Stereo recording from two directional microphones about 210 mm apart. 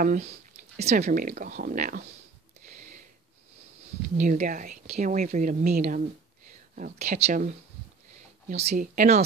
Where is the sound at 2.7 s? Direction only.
35° right (ahead or behind).